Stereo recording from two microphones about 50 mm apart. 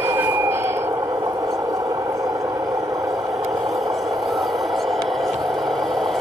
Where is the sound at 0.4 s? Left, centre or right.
Right.